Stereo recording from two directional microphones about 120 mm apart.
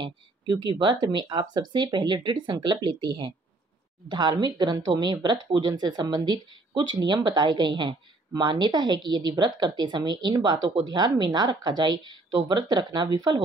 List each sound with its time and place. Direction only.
0.0 s speech: 35° right (ahead or behind)